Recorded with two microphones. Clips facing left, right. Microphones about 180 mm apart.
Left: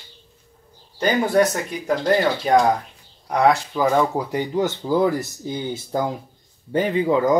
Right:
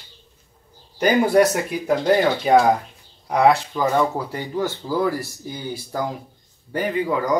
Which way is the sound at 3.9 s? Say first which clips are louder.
Left 1 dB; 15° left (ahead or behind).